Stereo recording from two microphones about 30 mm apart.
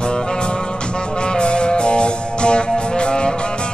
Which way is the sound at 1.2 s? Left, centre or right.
Left.